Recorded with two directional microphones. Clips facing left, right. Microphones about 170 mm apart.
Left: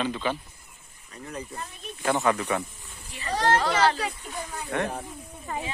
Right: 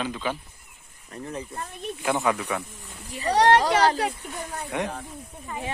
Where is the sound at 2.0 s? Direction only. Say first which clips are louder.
Left 1 dB; 5° right (ahead or behind).